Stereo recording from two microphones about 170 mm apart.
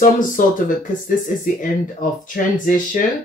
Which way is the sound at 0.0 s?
55° left (ahead or behind).